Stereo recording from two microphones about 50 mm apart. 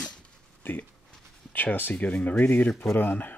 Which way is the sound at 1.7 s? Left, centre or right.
Left.